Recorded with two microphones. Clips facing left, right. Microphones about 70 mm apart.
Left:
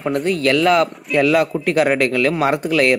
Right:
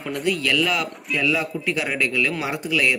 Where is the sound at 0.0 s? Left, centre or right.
Left.